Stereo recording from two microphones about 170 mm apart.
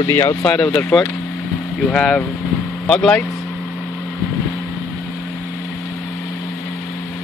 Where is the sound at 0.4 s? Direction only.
5° left (ahead or behind).